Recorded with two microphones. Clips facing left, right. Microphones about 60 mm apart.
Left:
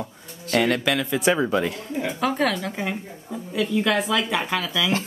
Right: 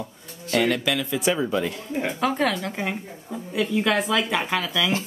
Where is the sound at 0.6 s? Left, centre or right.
Left.